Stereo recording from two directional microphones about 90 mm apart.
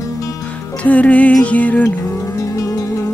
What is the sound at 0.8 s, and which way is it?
Music, 15° left (ahead or behind).